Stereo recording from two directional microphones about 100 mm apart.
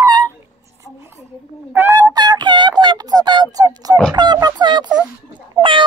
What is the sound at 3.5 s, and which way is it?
Fowl, 40° right (ahead or behind).